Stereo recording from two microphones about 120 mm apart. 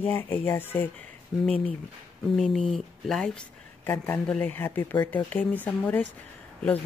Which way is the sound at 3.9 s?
15° left (ahead or behind).